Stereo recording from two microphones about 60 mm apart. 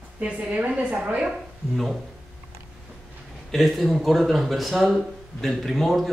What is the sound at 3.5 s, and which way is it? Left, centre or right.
Speech, centre.